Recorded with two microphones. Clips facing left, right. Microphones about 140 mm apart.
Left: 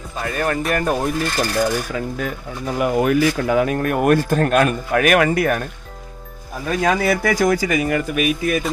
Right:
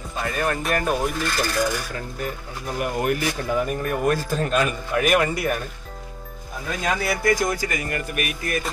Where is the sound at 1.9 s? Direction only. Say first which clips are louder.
Left 6 dB; 90° left.